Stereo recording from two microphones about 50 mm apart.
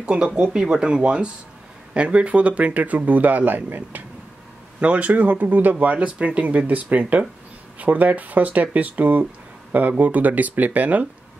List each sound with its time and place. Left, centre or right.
0.0 s speech: right
4.7 s speech: right